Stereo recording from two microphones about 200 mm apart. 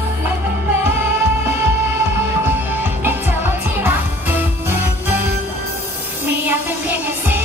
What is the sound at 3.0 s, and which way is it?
Music, 10° right (ahead or behind).